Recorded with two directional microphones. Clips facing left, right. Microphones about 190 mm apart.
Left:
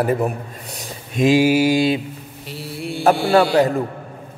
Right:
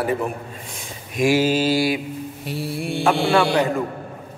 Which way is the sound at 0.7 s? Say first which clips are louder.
Left 3 dB; 40° left (ahead or behind).